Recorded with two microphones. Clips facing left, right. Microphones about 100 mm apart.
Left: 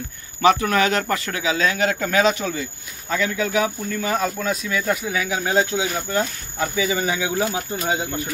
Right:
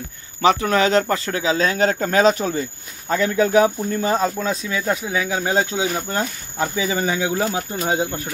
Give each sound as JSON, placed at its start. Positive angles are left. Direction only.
{"t": 0.4, "sound": "speech", "side_deg": -30}